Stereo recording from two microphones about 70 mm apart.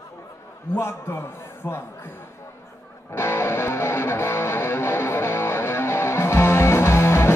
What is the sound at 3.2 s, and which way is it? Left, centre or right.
Music, left.